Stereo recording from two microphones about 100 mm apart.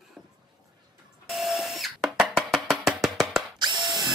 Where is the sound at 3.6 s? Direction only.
45° right (ahead or behind).